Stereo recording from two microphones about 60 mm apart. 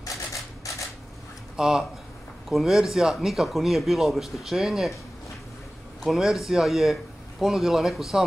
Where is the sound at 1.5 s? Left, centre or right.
Centre.